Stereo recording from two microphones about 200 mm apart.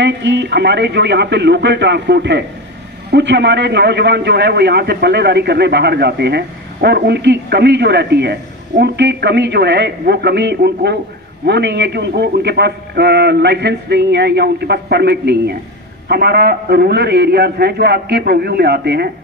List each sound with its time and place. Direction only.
0.0 s a man's voice: 65° right (ahead or behind)